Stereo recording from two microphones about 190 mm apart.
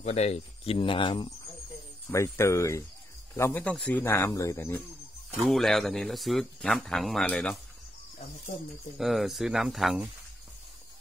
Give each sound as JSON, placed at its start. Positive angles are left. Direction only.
{"t": 0.0, "sound": "speech", "side_deg": 35}
{"t": 2.0, "sound": "speech", "side_deg": 15}
{"t": 5.4, "sound": "speech", "side_deg": 0}
{"t": 8.9, "sound": "speech", "side_deg": 0}